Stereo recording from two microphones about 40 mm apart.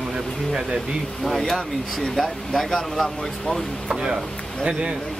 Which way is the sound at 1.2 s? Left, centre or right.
Centre.